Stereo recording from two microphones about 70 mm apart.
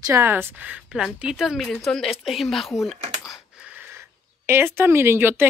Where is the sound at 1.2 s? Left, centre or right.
Centre.